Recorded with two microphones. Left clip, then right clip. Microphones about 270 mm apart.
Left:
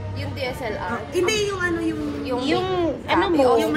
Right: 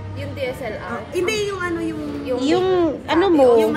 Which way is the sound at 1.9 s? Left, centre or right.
Centre.